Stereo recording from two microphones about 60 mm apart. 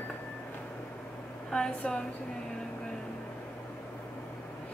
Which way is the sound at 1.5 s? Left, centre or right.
Centre.